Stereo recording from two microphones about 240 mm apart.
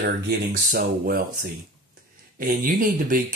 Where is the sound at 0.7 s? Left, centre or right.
Right.